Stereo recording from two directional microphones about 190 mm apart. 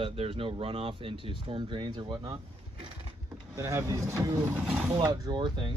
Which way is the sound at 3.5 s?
15° right (ahead or behind).